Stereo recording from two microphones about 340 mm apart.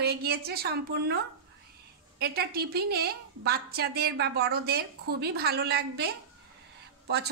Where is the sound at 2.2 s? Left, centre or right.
Right.